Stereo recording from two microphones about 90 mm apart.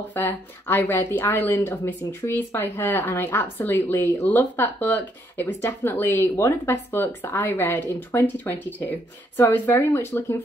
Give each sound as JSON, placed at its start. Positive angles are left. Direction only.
{"t": 0.1, "sound": "a woman's voice", "side_deg": 25}